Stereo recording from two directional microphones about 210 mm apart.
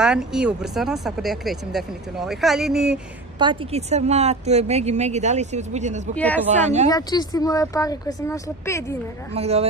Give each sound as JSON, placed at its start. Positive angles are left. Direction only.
{"t": 0.0, "sound": "speech", "side_deg": -5}
{"t": 3.3, "sound": "speech", "side_deg": -25}
{"t": 6.1, "sound": "speech", "side_deg": 5}
{"t": 6.5, "sound": "speech", "side_deg": -35}
{"t": 6.9, "sound": "speech", "side_deg": 20}
{"t": 9.3, "sound": "speech", "side_deg": -30}